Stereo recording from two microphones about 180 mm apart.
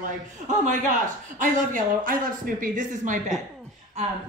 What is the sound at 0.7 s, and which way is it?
A man's voice, 45° right (ahead or behind).